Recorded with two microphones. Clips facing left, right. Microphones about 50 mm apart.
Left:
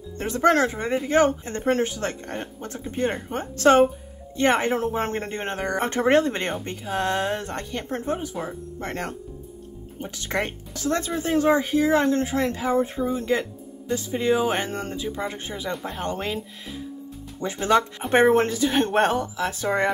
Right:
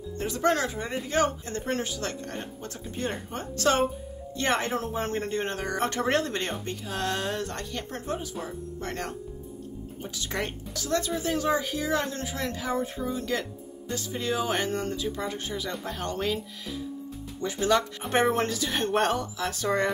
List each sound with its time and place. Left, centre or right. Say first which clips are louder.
0.2 s speech: left 6 dB; left
15.7 s speech: left 4 dB; centre
17.4 s speech: left 4 dB; left